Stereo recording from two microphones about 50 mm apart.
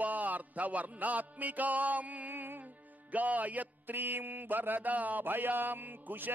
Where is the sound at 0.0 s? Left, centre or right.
Right.